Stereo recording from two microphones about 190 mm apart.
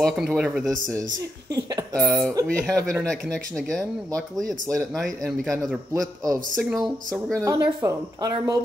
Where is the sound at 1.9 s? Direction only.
Centre (ahead or behind).